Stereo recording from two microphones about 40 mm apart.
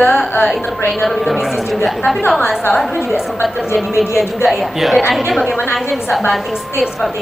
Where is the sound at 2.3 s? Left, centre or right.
Centre.